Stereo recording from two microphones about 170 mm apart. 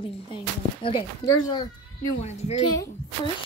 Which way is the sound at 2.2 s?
40° left (ahead or behind).